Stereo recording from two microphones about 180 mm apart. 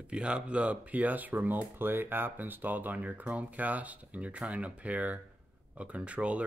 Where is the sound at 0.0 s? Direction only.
5° right (ahead or behind).